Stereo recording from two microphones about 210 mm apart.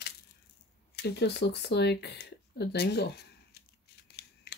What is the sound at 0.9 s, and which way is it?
Speech, 50° left (ahead or behind).